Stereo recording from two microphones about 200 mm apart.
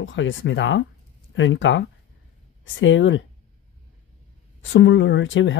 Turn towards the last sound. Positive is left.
turn(degrees=65)  # may be behind; listen again after turning